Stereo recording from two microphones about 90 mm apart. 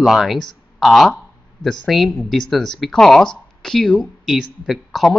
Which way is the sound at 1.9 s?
Centre (ahead or behind).